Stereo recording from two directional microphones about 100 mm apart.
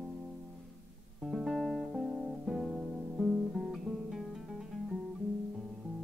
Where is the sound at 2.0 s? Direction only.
15° right (ahead or behind).